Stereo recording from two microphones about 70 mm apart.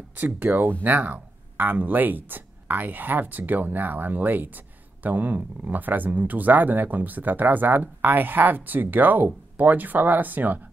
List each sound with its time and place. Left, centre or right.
0.2 s speech: right